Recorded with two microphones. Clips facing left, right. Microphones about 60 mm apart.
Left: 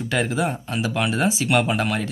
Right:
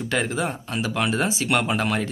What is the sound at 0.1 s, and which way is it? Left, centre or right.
Speech, centre.